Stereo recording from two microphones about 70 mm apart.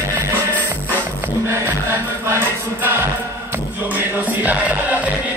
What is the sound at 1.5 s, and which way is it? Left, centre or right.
Music, right.